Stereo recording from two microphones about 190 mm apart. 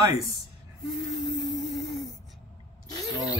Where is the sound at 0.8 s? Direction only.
Centre (ahead or behind).